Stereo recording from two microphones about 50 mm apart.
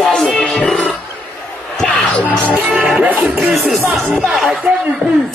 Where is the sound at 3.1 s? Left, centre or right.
Right.